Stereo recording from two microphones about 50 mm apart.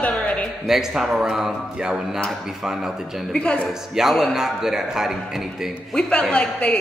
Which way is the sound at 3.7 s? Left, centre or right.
Centre.